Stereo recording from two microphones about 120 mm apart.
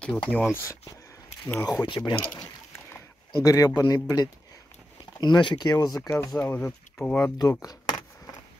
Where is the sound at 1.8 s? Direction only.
40° left (ahead or behind).